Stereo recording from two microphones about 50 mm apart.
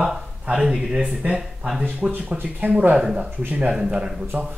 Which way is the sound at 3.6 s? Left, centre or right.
Centre.